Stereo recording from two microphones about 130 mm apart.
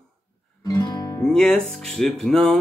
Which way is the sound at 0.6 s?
30° left (ahead or behind).